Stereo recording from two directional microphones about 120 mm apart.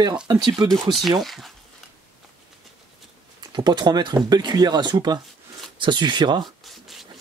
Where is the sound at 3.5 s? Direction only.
40° right (ahead or behind).